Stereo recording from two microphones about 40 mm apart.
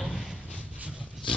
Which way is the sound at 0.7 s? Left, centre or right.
Right.